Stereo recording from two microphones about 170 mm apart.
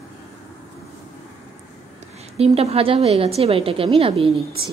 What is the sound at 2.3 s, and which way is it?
A woman's voice, 40° right (ahead or behind).